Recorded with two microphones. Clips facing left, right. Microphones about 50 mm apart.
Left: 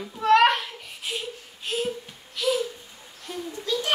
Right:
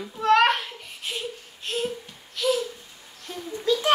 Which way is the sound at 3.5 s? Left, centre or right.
Right.